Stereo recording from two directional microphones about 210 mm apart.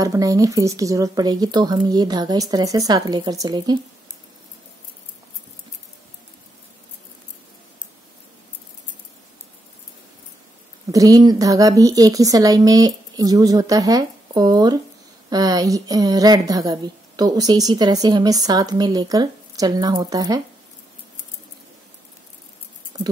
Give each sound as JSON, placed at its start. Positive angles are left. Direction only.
{"t": 0.0, "sound": "speech", "side_deg": -15}
{"t": 10.9, "sound": "speech", "side_deg": -15}
{"t": 22.9, "sound": "a sound", "side_deg": -20}